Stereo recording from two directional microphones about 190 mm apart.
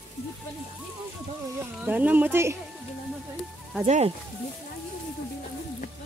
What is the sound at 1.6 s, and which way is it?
Speech, 10° right (ahead or behind).